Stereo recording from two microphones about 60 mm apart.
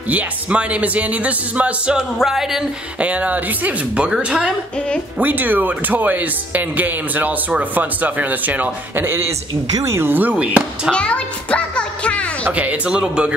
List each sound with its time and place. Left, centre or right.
0.1 s speech: right
2.0 s music: centre
3.0 s speech: right
5.2 s speech: right
9.0 s a man's voice: right
10.3 s speech: right
10.9 s music: centre
12.5 s speech: right